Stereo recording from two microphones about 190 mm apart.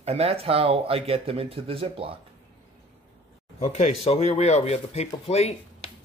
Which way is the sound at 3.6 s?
35° left (ahead or behind).